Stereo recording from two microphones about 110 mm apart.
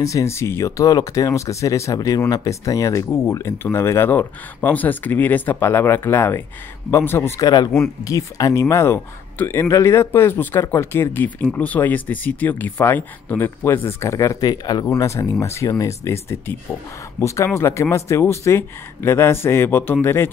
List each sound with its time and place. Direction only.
0.0 s speech: 30° left (ahead or behind)
7.4 s speech: 40° left (ahead or behind)
17.6 s speech: 25° left (ahead or behind)